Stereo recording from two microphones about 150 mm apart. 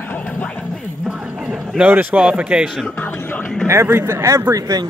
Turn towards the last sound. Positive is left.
turn(degrees=-20)  # may be behind; listen again after turning